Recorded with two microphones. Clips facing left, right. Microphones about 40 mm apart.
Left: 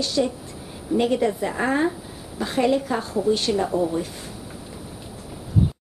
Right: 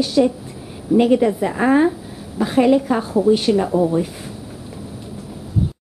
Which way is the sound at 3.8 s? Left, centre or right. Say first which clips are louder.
Right 6 dB; right.